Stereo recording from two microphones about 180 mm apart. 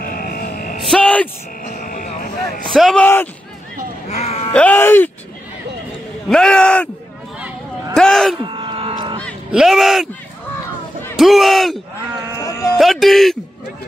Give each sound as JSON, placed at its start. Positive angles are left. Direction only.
{"t": 0.0, "sound": "music", "side_deg": 55}
{"t": 0.7, "sound": "music", "side_deg": 5}
{"t": 1.6, "sound": "vehicle", "side_deg": 45}
{"t": 2.7, "sound": "speech", "side_deg": 0}
{"t": 4.1, "sound": "bleat", "side_deg": 35}
{"t": 4.6, "sound": "speech", "side_deg": 10}
{"t": 6.2, "sound": "speech", "side_deg": 5}
{"t": 7.9, "sound": "speech", "side_deg": 0}
{"t": 8.4, "sound": "livestock", "side_deg": -25}
{"t": 9.5, "sound": "speech", "side_deg": 0}
{"t": 11.1, "sound": "speech", "side_deg": 0}
{"t": 12.4, "sound": "a sound", "side_deg": 15}
{"t": 12.7, "sound": "speech", "side_deg": 0}